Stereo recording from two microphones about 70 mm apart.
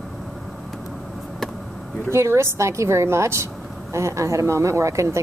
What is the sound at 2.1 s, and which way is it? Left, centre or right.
A woman's voice, right.